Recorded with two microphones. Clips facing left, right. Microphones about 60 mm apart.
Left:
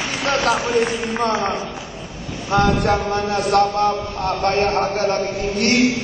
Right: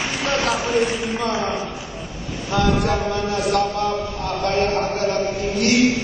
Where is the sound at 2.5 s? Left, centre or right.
Left.